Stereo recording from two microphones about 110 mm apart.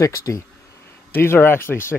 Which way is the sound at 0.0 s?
30° left (ahead or behind).